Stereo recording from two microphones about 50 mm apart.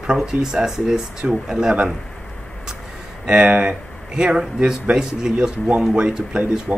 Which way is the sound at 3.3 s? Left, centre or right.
Right.